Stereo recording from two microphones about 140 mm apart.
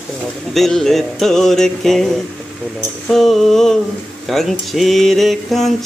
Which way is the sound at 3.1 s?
Centre (ahead or behind).